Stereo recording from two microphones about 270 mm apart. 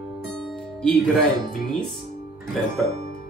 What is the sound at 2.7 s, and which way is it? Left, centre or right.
Speech, right.